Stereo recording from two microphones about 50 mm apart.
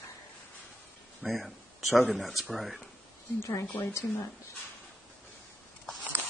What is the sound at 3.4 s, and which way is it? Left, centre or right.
Speech, left.